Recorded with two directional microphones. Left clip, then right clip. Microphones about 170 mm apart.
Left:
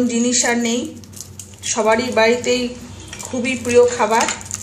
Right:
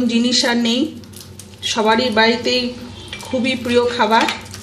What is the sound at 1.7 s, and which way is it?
Speech, 50° right (ahead or behind).